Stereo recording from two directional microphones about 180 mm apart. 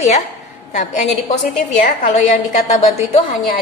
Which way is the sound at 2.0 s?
40° left (ahead or behind).